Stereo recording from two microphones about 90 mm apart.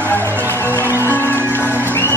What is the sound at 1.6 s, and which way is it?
Music, 20° right (ahead or behind).